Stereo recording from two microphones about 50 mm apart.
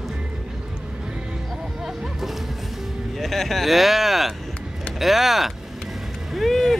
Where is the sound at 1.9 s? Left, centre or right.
Centre.